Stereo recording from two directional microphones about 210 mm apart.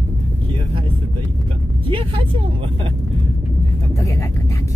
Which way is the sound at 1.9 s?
25° right (ahead or behind).